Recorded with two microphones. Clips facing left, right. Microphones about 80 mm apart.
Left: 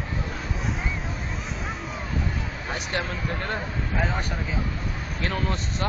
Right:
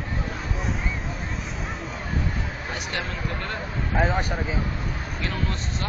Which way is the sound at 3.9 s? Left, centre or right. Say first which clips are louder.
Right 5 dB; centre.